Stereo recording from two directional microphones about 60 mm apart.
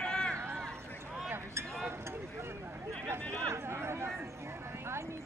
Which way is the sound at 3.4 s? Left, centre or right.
Right.